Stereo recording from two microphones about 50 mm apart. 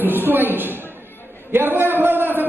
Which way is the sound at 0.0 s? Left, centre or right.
Right.